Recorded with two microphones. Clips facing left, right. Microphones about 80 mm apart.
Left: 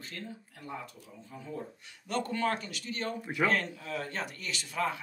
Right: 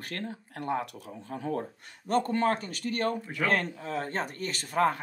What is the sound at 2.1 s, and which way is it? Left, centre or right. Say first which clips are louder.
Speech: right 5 dB; right.